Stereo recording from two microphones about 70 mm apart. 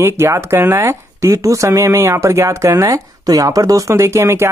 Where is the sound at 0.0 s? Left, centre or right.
Right.